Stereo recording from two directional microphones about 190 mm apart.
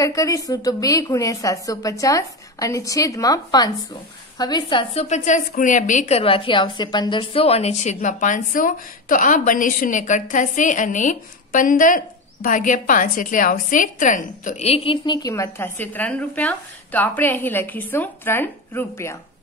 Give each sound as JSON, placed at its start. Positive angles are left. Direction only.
{"t": 0.0, "sound": "a woman's voice", "side_deg": 15}
{"t": 5.0, "sound": "a woman's voice", "side_deg": 40}